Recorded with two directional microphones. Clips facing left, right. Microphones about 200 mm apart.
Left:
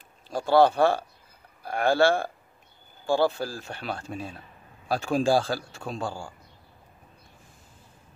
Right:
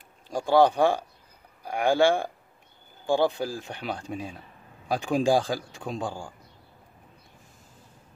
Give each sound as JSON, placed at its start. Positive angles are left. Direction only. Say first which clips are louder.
{"t": 0.3, "sound": "a man's voice", "louder": "even", "side_deg": -15}